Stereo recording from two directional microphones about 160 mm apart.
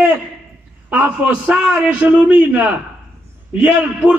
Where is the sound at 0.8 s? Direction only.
10° right (ahead or behind).